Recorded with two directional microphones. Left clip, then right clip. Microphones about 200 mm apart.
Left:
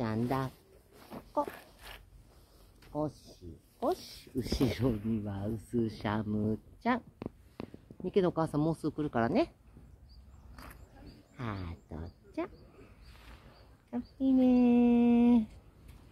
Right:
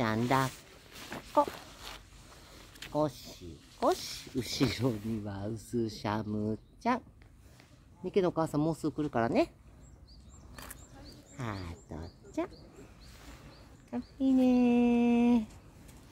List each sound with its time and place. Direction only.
0.0 s speech: 15° right (ahead or behind)
1.1 s walk: 15° right (ahead or behind)
2.9 s speech: 30° right (ahead or behind)
3.8 s speech: 5° right (ahead or behind)
10.5 s a sound: 30° right (ahead or behind)
11.3 s speech: centre (ahead or behind)
13.8 s speech: 5° left (ahead or behind)